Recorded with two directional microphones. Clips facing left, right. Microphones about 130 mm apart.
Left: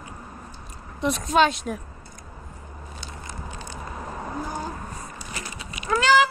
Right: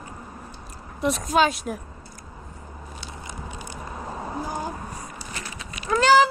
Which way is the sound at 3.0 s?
15° right (ahead or behind).